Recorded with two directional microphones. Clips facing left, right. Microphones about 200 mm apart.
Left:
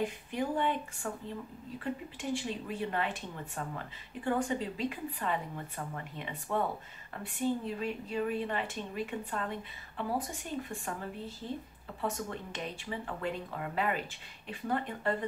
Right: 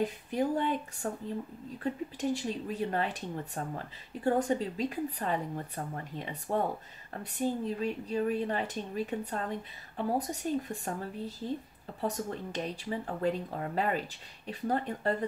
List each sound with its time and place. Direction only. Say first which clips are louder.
0.0 s speech: right 3 dB; 40° right (ahead or behind)
12.0 s speech: right 2 dB; 40° right (ahead or behind)